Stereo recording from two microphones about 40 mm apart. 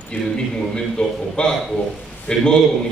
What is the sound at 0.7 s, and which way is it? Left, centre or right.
A man's voice, left.